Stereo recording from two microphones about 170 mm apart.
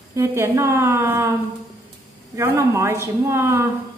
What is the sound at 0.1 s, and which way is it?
Speech, 15° right (ahead or behind).